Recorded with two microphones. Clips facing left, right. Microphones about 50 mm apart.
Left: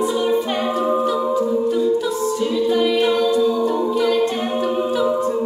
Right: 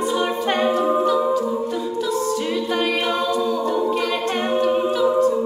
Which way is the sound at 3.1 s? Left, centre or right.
Right.